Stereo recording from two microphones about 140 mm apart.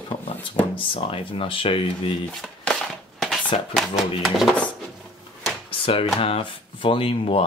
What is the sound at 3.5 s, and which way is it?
Speech, 50° left (ahead or behind).